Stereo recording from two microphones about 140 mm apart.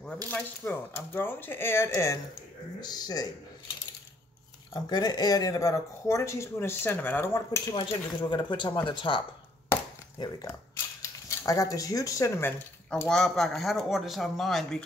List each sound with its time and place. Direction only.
0.3 s speech: 15° left (ahead or behind)
4.8 s speech: 30° left (ahead or behind)
7.6 s speech: 35° left (ahead or behind)
11.0 s speech: 20° left (ahead or behind)
13.1 s speech: 5° left (ahead or behind)